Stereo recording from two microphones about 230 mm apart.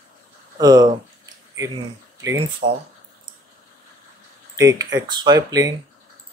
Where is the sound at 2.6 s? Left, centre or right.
Right.